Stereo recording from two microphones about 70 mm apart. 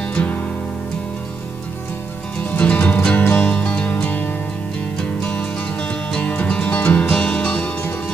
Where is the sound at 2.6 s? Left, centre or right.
Centre.